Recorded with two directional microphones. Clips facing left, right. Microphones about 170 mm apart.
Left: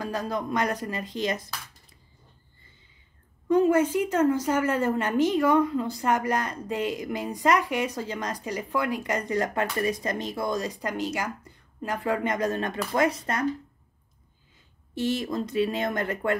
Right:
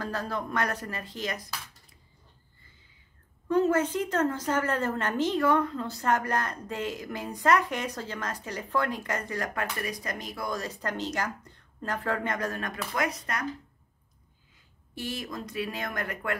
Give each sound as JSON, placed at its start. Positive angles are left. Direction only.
{"t": 0.0, "sound": "a woman's voice", "side_deg": 15}
{"t": 3.4, "sound": "a woman's voice", "side_deg": 15}
{"t": 15.0, "sound": "speech", "side_deg": 25}